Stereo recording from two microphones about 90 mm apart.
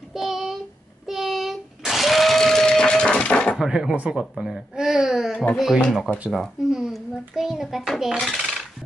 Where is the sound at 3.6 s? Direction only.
5° right (ahead or behind).